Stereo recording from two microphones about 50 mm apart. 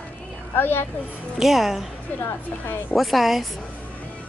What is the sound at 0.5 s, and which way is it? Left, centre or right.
Speech, left.